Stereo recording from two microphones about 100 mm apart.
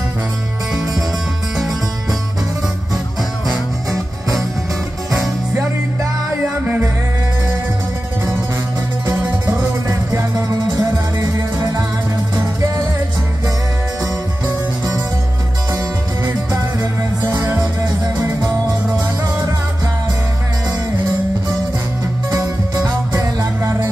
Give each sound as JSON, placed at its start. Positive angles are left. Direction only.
{"t": 9.8, "sound": "music", "side_deg": -40}
{"t": 17.6, "sound": "music", "side_deg": -40}
{"t": 22.3, "sound": "music", "side_deg": -35}